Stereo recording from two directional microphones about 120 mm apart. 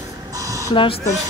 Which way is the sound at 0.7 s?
45° left (ahead or behind).